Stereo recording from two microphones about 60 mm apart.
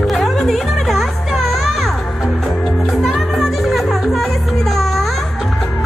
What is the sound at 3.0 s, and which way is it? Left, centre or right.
Music, centre.